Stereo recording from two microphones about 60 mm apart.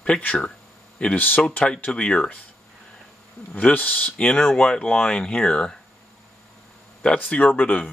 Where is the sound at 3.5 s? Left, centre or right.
Left.